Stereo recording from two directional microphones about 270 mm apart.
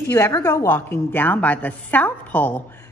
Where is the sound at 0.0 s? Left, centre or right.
Centre.